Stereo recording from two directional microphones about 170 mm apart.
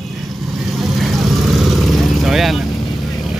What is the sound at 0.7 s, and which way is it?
Vehicle, centre (ahead or behind).